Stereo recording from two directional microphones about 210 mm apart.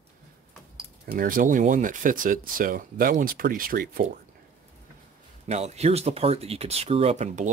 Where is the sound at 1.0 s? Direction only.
40° right (ahead or behind).